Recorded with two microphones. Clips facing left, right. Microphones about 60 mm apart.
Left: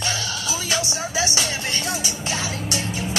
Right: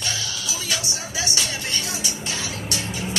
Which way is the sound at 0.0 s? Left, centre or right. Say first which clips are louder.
Left 3 dB; left.